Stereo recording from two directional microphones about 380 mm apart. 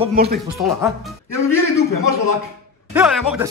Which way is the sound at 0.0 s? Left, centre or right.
Right.